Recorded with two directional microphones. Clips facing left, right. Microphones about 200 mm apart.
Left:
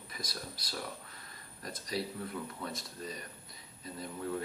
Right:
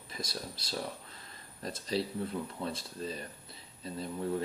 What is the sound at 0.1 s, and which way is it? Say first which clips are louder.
Speech: right 4 dB; 25° right (ahead or behind).